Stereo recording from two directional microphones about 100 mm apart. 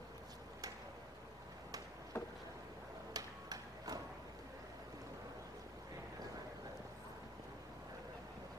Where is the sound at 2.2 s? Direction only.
25° left (ahead or behind).